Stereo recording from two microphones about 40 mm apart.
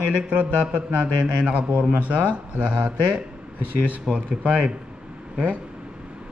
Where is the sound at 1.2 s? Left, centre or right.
Right.